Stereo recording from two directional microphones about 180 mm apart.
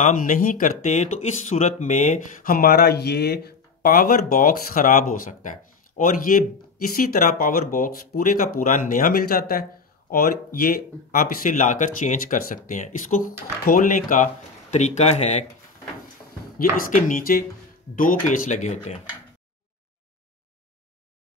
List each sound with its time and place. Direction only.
0.0 s speech: 45° left (ahead or behind)
16.5 s speech: 50° left (ahead or behind)